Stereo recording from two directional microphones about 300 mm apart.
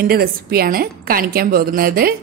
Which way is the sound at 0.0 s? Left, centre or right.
Right.